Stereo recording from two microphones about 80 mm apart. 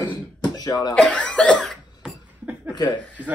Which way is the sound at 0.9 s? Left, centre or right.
Centre.